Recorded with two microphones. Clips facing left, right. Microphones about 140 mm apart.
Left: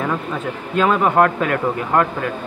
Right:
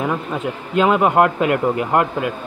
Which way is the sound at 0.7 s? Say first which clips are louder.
Right 1 dB; 15° right (ahead or behind).